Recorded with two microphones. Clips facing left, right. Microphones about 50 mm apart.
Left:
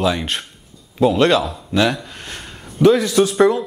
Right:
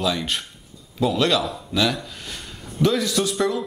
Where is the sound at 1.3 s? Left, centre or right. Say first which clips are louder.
Left 5 dB; centre.